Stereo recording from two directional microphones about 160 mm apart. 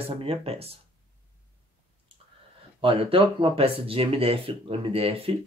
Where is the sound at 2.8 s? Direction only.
35° right (ahead or behind).